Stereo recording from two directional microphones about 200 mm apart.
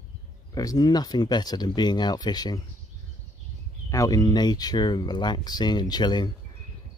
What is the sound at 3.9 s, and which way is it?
Speech, 15° left (ahead or behind).